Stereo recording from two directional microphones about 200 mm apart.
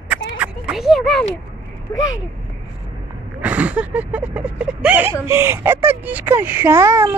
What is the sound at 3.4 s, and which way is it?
Speech, 5° right (ahead or behind).